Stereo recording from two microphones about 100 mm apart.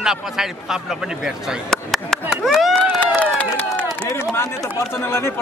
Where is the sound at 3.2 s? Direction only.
15° left (ahead or behind).